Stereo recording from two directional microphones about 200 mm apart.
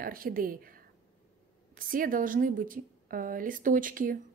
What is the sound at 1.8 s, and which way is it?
A woman's voice, 45° right (ahead or behind).